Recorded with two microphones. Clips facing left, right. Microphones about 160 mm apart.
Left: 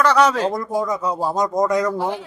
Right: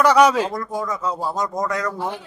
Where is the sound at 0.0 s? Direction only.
10° right (ahead or behind).